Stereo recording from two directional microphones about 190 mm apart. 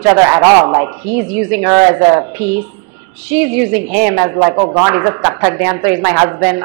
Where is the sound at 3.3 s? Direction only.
10° right (ahead or behind).